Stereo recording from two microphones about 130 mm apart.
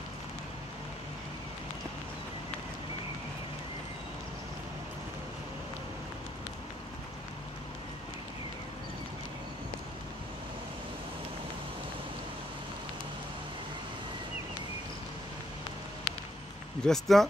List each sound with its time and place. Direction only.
16.8 s speech: centre (ahead or behind)